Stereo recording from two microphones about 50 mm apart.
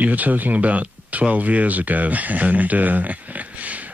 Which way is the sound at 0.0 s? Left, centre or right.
Right.